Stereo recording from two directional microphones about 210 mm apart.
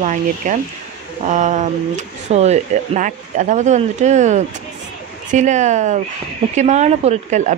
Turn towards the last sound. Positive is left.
turn(degrees=-35)  # may be behind; listen again after turning